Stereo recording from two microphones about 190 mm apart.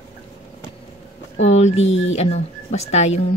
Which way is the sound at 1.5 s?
35° left (ahead or behind).